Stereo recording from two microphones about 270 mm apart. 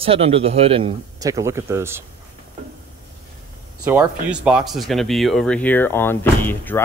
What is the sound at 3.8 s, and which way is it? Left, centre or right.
Speech, centre.